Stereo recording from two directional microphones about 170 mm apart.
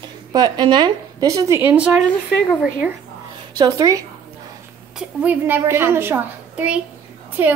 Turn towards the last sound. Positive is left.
turn(degrees=-10)  # may be behind; listen again after turning